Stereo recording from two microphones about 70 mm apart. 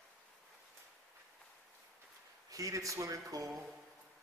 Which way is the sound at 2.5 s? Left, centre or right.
Right.